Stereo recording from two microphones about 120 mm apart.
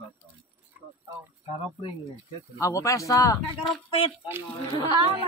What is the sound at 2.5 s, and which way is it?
Speech, 25° left (ahead or behind).